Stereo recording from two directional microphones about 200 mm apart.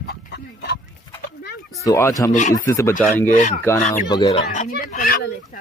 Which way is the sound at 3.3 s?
40° left (ahead or behind).